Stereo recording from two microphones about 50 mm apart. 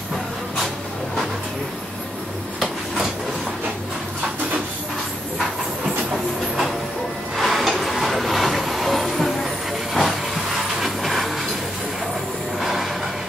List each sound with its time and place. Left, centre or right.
7.3 s vehicle: centre
9.9 s train: centre
12.5 s a sound: centre